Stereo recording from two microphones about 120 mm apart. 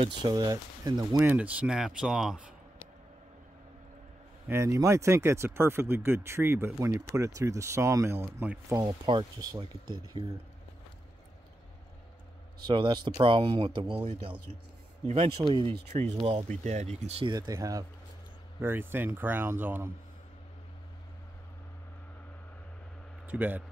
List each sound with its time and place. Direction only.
0.0 s speech: 35° right (ahead or behind)
1.2 s speech: 10° right (ahead or behind)
4.5 s speech: 25° right (ahead or behind)
9.0 s speech: 35° right (ahead or behind)
12.6 s speech: 40° right (ahead or behind)
15.1 s speech: 45° right (ahead or behind)
16.4 s speech: 75° right (ahead or behind)
17.2 s speech: 35° right (ahead or behind)
18.6 s speech: 15° right (ahead or behind)
23.2 s a man's voice: 15° right (ahead or behind)